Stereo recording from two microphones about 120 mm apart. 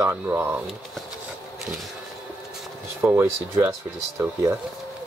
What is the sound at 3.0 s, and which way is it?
Speech, 20° right (ahead or behind).